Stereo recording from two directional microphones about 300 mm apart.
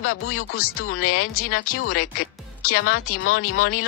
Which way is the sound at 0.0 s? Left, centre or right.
Left.